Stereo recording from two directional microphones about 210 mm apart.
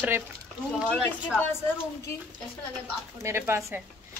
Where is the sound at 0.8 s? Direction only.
5° left (ahead or behind).